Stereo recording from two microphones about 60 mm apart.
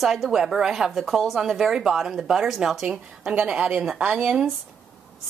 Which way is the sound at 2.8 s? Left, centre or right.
Centre.